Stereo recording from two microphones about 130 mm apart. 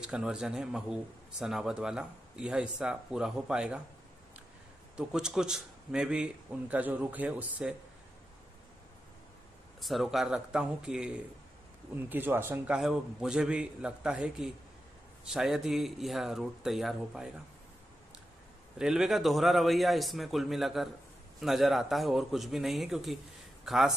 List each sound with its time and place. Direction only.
0.0 s speech: 5° right (ahead or behind)
4.9 s a man's voice: 5° right (ahead or behind)
9.8 s a man's voice: centre (ahead or behind); by 12.7 s 15° right (ahead or behind)
12.7 s speech: 5° right (ahead or behind)
18.8 s speech: 5° right (ahead or behind)